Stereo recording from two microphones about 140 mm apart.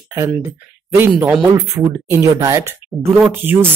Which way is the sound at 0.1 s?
20° right (ahead or behind).